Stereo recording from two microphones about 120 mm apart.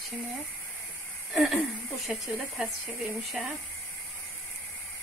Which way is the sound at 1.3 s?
Centre (ahead or behind).